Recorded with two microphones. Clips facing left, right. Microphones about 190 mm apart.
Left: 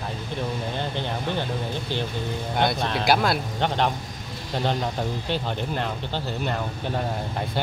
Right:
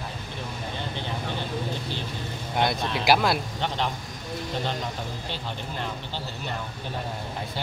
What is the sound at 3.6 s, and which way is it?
Speech, 55° left (ahead or behind).